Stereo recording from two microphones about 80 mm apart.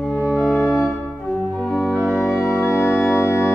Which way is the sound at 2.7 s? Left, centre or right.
Left.